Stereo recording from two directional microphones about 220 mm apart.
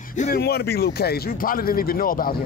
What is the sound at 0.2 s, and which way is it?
Speech, 45° left (ahead or behind).